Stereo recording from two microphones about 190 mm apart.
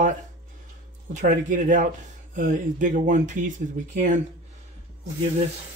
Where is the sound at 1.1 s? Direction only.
45° right (ahead or behind).